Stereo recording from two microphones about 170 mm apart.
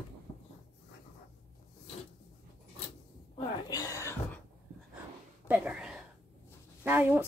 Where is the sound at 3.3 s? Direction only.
25° left (ahead or behind).